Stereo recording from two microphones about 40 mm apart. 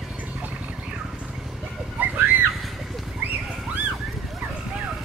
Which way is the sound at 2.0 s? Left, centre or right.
Right.